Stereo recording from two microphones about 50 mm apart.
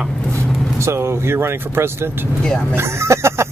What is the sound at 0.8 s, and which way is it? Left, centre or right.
Speech, right.